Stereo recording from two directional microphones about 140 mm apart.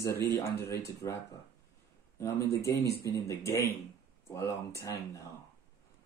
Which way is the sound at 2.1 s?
20° left (ahead or behind).